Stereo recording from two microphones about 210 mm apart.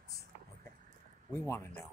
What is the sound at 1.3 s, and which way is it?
Speech, 10° left (ahead or behind).